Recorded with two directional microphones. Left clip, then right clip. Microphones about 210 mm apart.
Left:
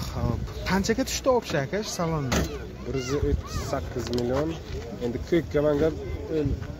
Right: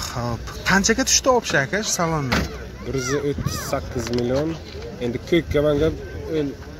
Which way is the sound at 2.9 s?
45° right (ahead or behind).